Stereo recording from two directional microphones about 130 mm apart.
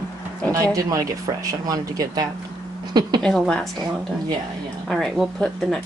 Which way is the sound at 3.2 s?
5° left (ahead or behind).